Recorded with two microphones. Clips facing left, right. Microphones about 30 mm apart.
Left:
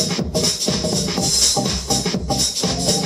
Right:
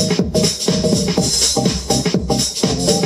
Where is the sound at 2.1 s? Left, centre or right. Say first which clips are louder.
Right 3 dB; centre.